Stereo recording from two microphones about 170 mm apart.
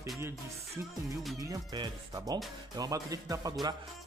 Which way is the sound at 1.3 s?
25° right (ahead or behind).